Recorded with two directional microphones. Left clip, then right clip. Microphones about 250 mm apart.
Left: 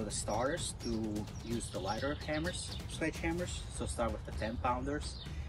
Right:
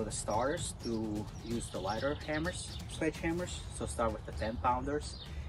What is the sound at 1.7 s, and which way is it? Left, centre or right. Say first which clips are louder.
Speech: right 2 dB; centre.